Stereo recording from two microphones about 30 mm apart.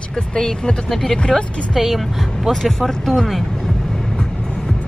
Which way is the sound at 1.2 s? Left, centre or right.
Left.